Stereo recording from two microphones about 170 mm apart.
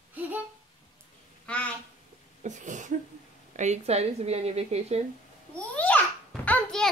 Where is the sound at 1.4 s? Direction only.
5° left (ahead or behind).